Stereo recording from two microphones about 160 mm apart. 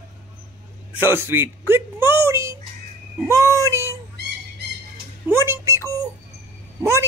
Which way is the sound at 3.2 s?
20° right (ahead or behind).